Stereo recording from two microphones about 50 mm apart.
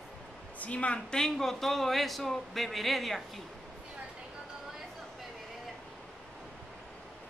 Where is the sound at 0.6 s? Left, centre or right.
Left.